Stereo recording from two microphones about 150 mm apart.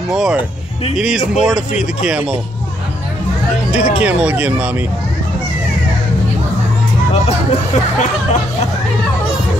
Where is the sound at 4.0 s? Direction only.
10° right (ahead or behind).